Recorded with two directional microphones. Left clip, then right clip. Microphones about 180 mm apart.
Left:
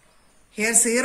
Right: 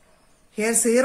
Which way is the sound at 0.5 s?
55° right (ahead or behind).